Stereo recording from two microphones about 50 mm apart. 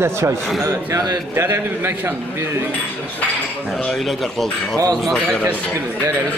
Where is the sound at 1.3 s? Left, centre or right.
Right.